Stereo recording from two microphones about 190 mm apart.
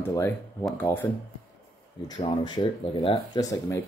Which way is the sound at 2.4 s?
25° left (ahead or behind).